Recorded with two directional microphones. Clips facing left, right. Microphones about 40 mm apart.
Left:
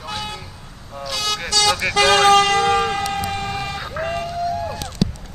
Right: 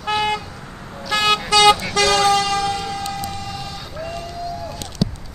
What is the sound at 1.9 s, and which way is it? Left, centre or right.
Vehicle, left.